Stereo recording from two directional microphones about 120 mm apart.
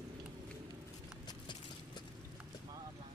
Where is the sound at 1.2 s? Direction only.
40° left (ahead or behind).